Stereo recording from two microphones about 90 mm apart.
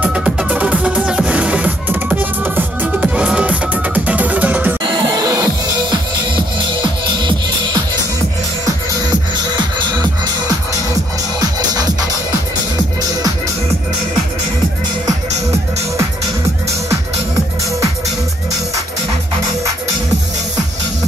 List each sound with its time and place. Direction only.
0.0 s music: 10° right (ahead or behind)
4.9 s music: 45° right (ahead or behind)
5.9 s music: 55° right (ahead or behind)
11.3 s music: 45° right (ahead or behind)